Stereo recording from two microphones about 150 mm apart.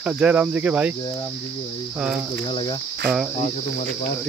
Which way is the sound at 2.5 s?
30° left (ahead or behind).